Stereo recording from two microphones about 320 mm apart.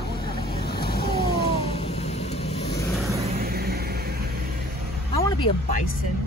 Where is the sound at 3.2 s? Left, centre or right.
Right.